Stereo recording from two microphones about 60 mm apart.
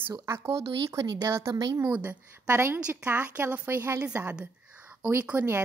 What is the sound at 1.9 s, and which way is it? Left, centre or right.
Speech, right.